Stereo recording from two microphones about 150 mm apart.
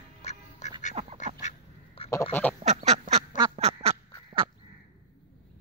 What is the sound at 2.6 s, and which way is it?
Duck, 50° right (ahead or behind).